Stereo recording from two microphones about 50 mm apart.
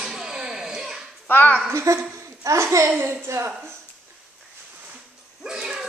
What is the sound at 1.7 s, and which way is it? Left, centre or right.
A child's voice, right.